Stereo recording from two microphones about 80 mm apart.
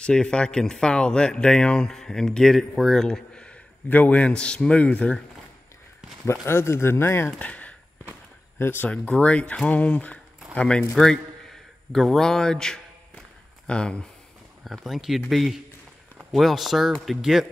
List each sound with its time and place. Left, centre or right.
0.0 s speech: centre
3.9 s speech: centre
6.4 s speech: left
7.3 s speech: centre
8.5 s speech: left
8.9 s speech: centre
11.9 s a man's voice: centre
14.6 s speech: centre